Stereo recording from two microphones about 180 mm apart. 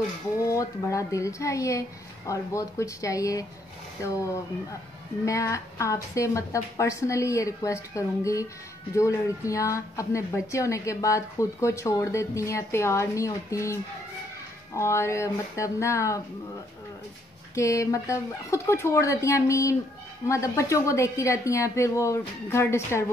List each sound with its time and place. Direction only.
0.4 s a woman's voice: 15° left (ahead or behind)
5.2 s a woman's voice: 15° left (ahead or behind)
14.8 s a woman's voice: 15° left (ahead or behind)
17.6 s a woman's voice: 15° left (ahead or behind)